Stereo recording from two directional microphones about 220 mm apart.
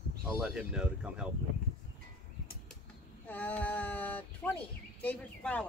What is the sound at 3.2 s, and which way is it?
Speech, 5° left (ahead or behind).